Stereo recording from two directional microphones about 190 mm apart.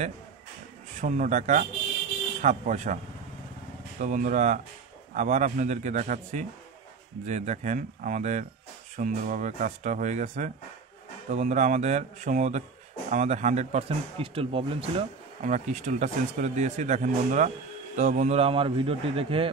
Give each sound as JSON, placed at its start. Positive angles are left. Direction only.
{"t": 1.0, "sound": "speech", "side_deg": -40}
{"t": 4.0, "sound": "speech", "side_deg": -40}
{"t": 15.4, "sound": "speech", "side_deg": -40}